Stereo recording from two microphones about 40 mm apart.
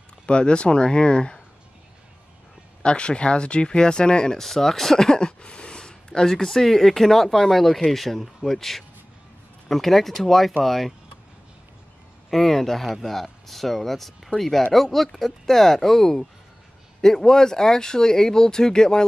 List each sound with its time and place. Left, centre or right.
0.3 s speech: left
2.8 s speech: left
4.4 s speech: centre
12.3 s speech: centre